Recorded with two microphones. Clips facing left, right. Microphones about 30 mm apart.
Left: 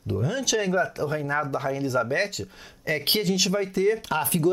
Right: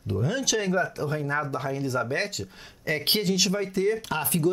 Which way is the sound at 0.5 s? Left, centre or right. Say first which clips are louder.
Left 3 dB; centre.